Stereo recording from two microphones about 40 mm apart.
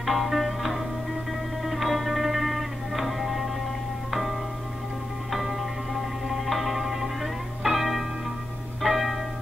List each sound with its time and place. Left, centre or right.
0.0 s music: centre
8.8 s church bell: centre